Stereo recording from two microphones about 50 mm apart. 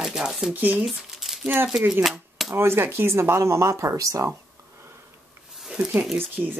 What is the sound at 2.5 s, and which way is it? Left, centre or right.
Speech, right.